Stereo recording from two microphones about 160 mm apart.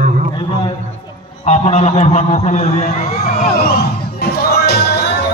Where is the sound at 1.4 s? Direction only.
45° left (ahead or behind).